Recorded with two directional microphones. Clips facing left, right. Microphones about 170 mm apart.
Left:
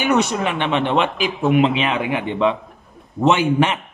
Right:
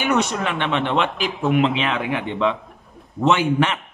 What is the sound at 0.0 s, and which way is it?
A man's voice, 10° left (ahead or behind).